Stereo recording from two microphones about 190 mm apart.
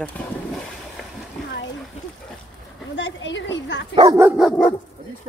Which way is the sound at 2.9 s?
70° left (ahead or behind).